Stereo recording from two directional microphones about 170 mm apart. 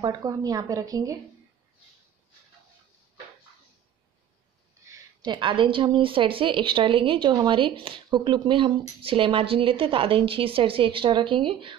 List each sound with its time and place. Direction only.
0.0 s a woman's voice: 20° right (ahead or behind)
4.8 s a woman's voice: 25° right (ahead or behind)